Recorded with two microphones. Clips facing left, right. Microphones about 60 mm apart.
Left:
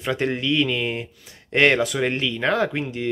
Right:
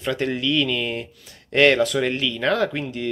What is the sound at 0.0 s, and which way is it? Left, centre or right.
Speech, centre.